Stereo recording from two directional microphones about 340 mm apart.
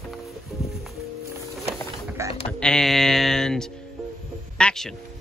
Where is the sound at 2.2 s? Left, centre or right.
Centre.